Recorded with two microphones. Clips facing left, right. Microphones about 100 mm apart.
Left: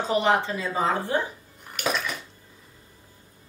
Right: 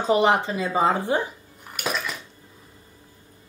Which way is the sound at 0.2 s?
15° right (ahead or behind).